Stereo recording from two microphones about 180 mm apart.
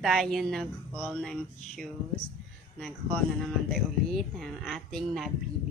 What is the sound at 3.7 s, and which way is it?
A woman's voice, centre (ahead or behind).